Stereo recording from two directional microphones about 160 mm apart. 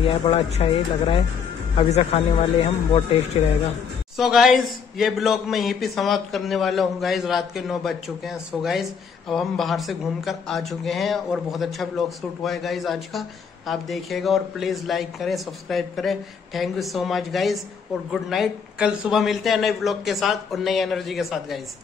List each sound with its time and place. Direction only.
0.0 s speech: 35° left (ahead or behind)
4.2 s speech: centre (ahead or behind)